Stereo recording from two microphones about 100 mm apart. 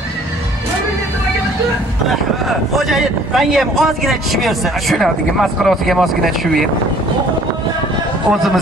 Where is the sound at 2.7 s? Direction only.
Centre (ahead or behind).